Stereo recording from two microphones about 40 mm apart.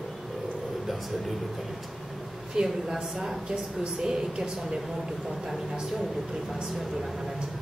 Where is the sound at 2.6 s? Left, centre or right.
Centre.